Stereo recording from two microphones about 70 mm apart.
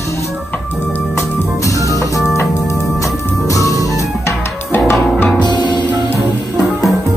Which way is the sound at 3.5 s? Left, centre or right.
Left.